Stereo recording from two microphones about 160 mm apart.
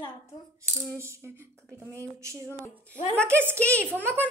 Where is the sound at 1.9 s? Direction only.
20° right (ahead or behind).